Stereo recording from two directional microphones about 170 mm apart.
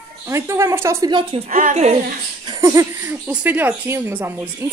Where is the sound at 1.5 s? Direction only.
50° right (ahead or behind).